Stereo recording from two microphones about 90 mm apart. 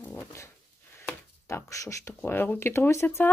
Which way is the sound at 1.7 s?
35° left (ahead or behind).